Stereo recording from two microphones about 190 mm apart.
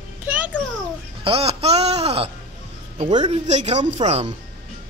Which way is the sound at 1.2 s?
30° right (ahead or behind).